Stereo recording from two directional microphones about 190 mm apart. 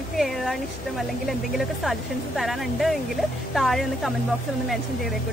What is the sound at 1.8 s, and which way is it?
Speech, centre (ahead or behind).